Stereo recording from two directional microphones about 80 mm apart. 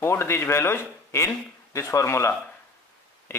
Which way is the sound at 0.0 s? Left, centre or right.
Left.